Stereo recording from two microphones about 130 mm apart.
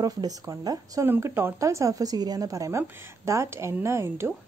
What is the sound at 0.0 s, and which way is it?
A woman's voice, 30° right (ahead or behind).